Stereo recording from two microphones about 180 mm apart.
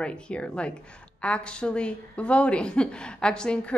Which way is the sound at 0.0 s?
5° left (ahead or behind).